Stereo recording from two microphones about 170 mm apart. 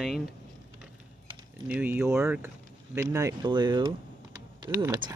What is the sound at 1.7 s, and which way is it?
Speech, 10° right (ahead or behind).